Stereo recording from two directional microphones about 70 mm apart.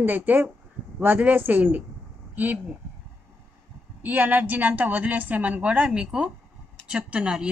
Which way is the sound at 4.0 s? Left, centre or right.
Right.